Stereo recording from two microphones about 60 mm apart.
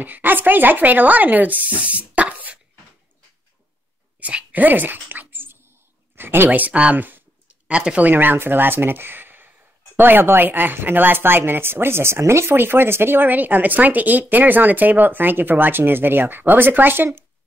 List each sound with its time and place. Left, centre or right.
0.0 s speech: right
4.2 s a sound: right
6.1 s speech: right
7.0 s a sound: right
7.7 s speech: centre
8.1 s speech: right